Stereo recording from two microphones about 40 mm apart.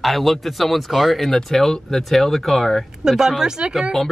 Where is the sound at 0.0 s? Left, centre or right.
Centre.